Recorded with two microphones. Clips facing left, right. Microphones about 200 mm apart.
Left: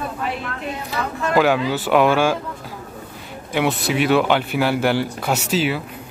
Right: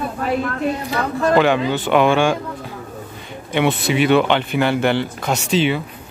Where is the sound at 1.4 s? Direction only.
5° left (ahead or behind).